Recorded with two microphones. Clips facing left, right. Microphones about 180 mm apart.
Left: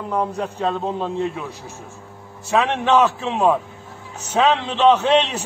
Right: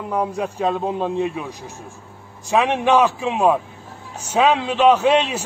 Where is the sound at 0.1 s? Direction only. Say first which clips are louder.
Right 1 dB; 10° right (ahead or behind).